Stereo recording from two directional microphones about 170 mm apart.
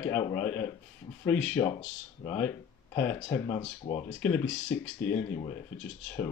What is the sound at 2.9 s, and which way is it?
Speech, 15° left (ahead or behind).